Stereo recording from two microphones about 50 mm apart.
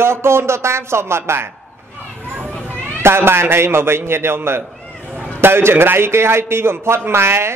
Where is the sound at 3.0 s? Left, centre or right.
Right.